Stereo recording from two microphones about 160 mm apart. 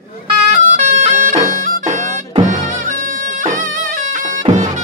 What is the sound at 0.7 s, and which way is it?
Bagpipes, 50° right (ahead or behind).